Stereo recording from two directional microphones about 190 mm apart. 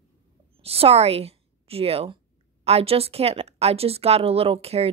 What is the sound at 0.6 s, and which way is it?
A woman's voice, 30° right (ahead or behind).